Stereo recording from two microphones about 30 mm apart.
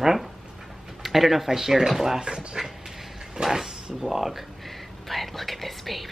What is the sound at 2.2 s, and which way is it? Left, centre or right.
Speech, right.